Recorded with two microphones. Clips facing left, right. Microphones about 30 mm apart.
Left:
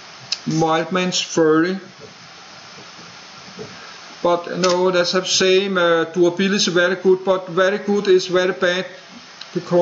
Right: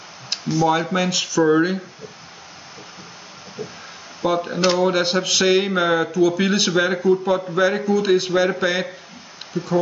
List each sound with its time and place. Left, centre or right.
0.3 s speech: centre
4.3 s speech: centre
9.5 s speech: left